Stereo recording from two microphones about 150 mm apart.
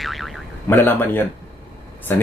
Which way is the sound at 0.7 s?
15° left (ahead or behind).